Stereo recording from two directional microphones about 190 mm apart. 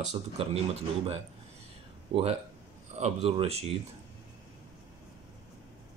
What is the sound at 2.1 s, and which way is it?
Speech, 30° right (ahead or behind).